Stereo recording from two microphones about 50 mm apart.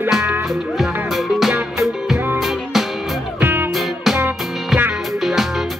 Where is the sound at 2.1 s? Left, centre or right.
Right.